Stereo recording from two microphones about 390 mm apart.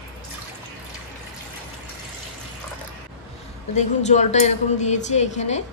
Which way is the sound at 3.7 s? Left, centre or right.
Centre.